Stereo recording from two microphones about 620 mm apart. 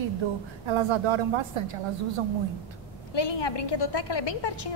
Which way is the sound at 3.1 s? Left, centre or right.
Left.